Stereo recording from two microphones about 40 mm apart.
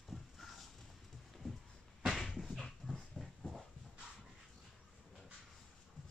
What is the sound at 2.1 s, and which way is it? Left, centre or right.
Dog, centre.